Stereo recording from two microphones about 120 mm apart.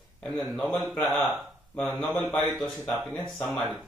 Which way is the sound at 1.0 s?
15° left (ahead or behind).